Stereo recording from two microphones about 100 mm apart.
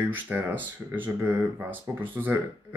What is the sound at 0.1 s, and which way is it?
Speech, 20° right (ahead or behind).